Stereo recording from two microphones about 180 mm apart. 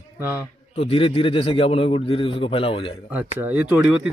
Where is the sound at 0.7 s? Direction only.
30° left (ahead or behind).